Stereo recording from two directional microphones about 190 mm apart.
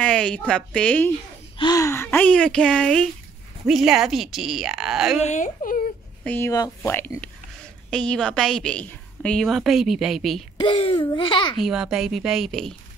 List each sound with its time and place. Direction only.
0.0 s a woman's voice: 5° left (ahead or behind)
1.6 s a woman's voice: 20° left (ahead or behind); by 5.2 s 5° right (ahead or behind)
5.2 s speech: 40° left (ahead or behind)
6.2 s a woman's voice: 10° left (ahead or behind)
10.6 s a child's voice: 30° left (ahead or behind)
11.6 s a woman's voice: 5° right (ahead or behind)